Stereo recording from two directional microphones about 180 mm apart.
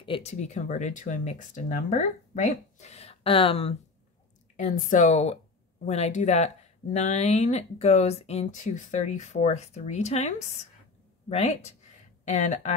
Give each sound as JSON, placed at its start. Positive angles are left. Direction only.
{"t": 0.0, "sound": "speech", "side_deg": 30}
{"t": 4.6, "sound": "speech", "side_deg": 45}